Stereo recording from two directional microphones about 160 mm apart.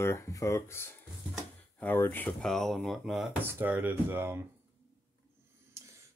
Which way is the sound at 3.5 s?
10° right (ahead or behind).